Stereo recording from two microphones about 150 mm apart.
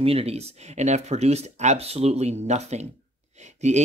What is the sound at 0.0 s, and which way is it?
Speech, 40° right (ahead or behind).